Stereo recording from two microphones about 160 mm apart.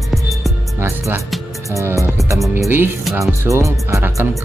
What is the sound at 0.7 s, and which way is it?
Speech, 15° right (ahead or behind).